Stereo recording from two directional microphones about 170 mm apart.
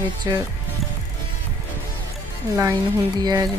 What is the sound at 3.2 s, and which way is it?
Speech, 20° right (ahead or behind).